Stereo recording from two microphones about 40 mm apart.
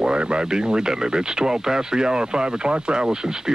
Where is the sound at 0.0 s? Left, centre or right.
Right.